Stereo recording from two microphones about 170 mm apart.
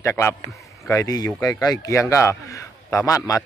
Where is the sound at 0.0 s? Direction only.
15° left (ahead or behind).